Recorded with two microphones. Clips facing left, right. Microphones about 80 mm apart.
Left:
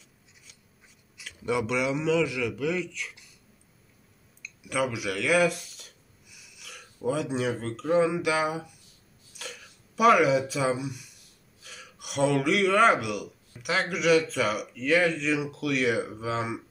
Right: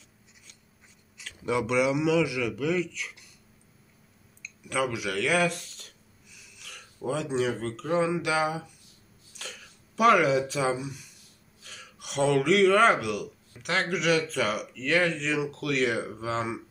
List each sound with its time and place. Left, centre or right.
1.1 s a man's voice: centre
4.4 s speech: centre